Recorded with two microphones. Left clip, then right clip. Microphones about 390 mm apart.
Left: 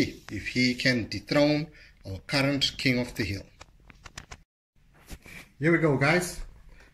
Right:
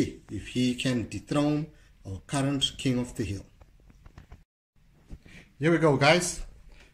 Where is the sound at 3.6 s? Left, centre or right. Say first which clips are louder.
Left 11 dB; left.